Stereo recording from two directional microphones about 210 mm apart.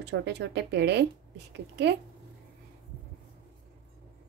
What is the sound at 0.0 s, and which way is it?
Speech, 55° right (ahead or behind).